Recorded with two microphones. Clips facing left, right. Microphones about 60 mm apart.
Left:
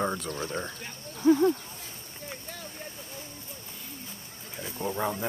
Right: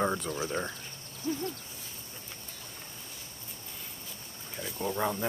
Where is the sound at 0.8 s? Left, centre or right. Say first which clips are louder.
Left 13 dB; left.